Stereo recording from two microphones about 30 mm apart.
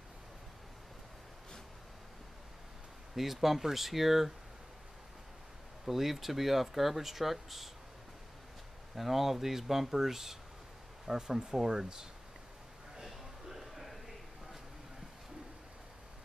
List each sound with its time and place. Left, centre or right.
3.2 s speech: centre
5.9 s speech: centre
8.9 s speech: centre
13.5 s a sound: centre